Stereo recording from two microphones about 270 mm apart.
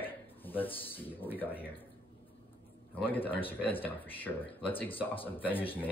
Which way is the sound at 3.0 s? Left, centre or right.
Centre.